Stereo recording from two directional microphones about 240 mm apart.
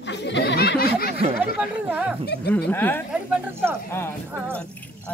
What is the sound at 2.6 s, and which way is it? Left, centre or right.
Speech, centre.